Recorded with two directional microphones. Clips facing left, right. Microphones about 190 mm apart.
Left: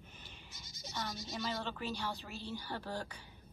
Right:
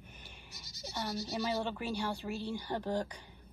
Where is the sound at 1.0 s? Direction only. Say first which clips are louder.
Right 6 dB; 35° right (ahead or behind).